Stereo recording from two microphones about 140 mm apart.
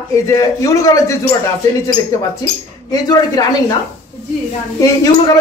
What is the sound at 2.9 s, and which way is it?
Speech, 25° left (ahead or behind).